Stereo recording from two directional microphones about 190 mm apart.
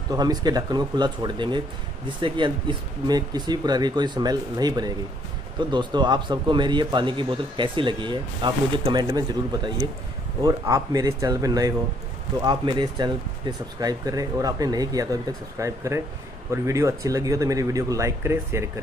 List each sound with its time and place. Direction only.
0.1 s speech: 20° right (ahead or behind)